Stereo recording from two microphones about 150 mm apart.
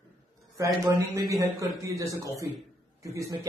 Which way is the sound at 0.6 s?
20° right (ahead or behind).